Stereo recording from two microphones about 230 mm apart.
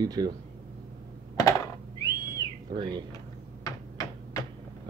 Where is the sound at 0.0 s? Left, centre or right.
Centre.